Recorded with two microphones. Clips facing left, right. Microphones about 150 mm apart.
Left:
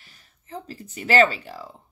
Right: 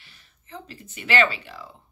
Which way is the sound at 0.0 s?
40° left (ahead or behind).